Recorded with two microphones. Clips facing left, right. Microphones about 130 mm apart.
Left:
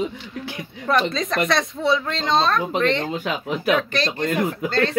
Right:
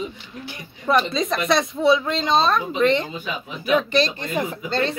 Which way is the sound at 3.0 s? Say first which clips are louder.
Left 5 dB; 75° left (ahead or behind).